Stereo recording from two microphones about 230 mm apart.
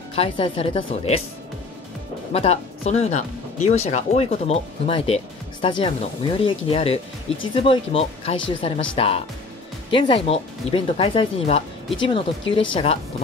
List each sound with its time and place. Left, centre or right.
0.1 s speech: left
2.3 s speech: left